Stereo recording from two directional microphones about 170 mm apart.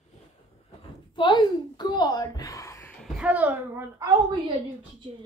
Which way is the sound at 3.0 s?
5° right (ahead or behind).